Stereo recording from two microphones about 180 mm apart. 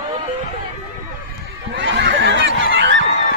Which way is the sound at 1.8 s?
90° right.